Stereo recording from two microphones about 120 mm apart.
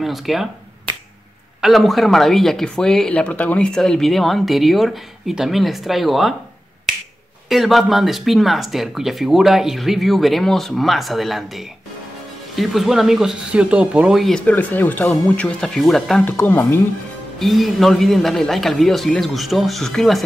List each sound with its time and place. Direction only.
0.0 s speech: centre (ahead or behind)
1.6 s speech: centre (ahead or behind)
7.4 s speech: centre (ahead or behind)
14.4 s speech: 15° left (ahead or behind)
16.3 s speech: 20° left (ahead or behind)
17.4 s speech: centre (ahead or behind)